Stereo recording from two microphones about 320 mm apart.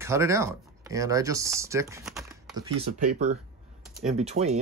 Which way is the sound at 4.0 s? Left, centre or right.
Centre.